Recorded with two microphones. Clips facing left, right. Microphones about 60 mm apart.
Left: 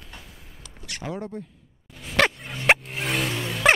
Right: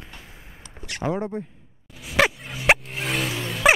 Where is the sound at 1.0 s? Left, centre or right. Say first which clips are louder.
Right 7 dB; right.